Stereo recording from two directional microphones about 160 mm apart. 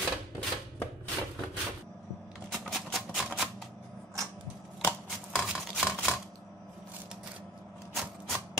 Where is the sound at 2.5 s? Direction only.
Centre (ahead or behind).